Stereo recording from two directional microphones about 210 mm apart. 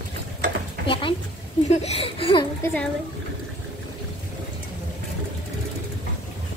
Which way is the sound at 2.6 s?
5° left (ahead or behind).